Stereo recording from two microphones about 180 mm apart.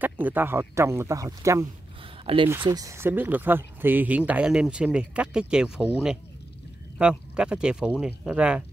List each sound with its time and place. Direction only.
0.0 s speech: 10° right (ahead or behind)
2.2 s speech: 30° right (ahead or behind)
2.6 s speech: 20° right (ahead or behind)
7.0 s speech: 5° right (ahead or behind)